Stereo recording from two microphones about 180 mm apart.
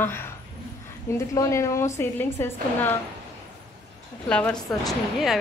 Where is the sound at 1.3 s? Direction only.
15° left (ahead or behind).